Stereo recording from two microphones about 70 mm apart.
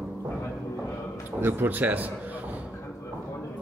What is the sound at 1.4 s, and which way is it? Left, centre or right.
Speech, right.